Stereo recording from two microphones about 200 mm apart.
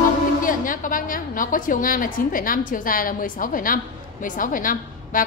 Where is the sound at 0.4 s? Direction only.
45° left (ahead or behind).